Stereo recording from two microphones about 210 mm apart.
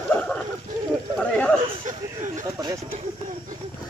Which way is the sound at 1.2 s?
5° left (ahead or behind).